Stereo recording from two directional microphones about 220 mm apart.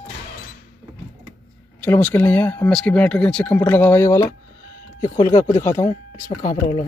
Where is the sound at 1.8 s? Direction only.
10° left (ahead or behind).